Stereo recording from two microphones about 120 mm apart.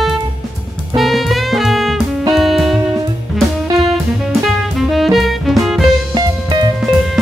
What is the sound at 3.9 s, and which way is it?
Music, centre (ahead or behind).